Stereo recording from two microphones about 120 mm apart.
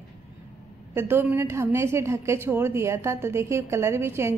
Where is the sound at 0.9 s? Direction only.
20° right (ahead or behind).